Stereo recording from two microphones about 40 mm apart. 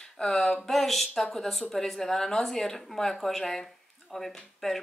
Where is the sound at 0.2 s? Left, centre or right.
Centre.